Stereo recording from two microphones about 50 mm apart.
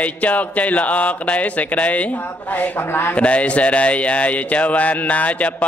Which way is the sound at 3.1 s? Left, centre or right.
Left.